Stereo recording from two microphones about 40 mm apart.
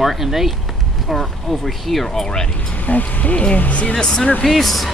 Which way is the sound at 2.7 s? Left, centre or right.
Left.